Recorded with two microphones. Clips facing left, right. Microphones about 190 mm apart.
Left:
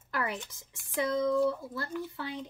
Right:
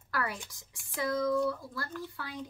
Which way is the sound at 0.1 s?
20° left (ahead or behind).